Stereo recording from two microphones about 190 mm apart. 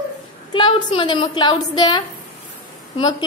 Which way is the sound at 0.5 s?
30° left (ahead or behind).